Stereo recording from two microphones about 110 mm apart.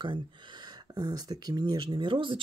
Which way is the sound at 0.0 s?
45° right (ahead or behind).